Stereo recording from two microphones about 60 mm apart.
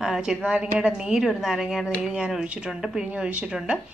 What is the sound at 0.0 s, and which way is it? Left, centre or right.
A woman's voice, centre.